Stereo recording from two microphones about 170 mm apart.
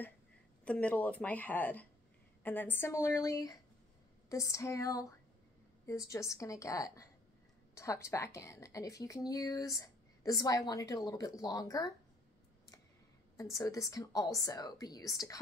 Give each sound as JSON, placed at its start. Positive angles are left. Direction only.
{"t": 0.7, "sound": "a woman's voice", "side_deg": 10}
{"t": 13.6, "sound": "a woman's voice", "side_deg": 20}